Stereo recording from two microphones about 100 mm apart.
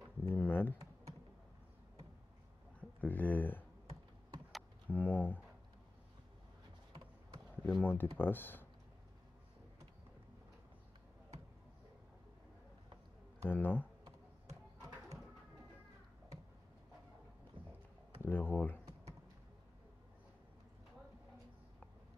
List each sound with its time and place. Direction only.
0.2 s speech: 20° left (ahead or behind)
2.8 s speech: 15° left (ahead or behind)
4.8 s speech: 15° left (ahead or behind)
7.5 s speech: 15° left (ahead or behind)
13.5 s speech: 20° left (ahead or behind)
17.6 s a sound: 60° right (ahead or behind)
18.2 s speech: 20° left (ahead or behind)